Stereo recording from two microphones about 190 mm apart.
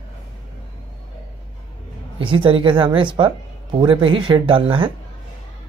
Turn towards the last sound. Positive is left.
turn(degrees=-25)  # may be behind; listen again after turning